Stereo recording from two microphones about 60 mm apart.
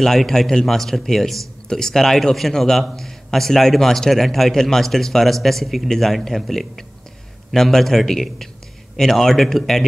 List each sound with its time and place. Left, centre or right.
0.0 s speech: centre